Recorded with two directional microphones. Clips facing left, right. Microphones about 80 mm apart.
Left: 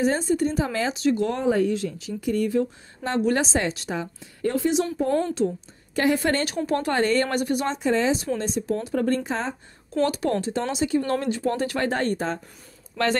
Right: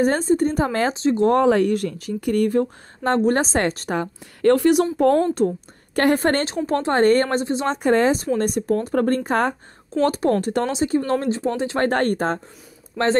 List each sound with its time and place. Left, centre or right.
0.0 s speech: right
0.9 s speech: right
1.3 s speech: right
5.9 s speech: right
6.4 s speech: right
7.2 s speech: right
7.6 s speech: right
10.0 s speech: right
11.8 s speech: right
12.9 s speech: right